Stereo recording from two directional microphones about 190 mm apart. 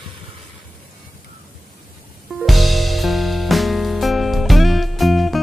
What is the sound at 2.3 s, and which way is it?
Music, centre (ahead or behind).